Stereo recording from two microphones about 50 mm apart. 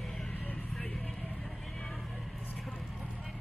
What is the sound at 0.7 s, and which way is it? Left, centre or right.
Vehicle, centre.